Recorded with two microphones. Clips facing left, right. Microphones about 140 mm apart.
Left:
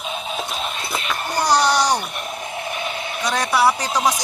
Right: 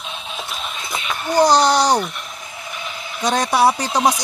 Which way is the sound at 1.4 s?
25° right (ahead or behind).